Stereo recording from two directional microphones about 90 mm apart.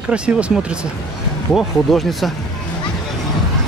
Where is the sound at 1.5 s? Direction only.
Centre (ahead or behind).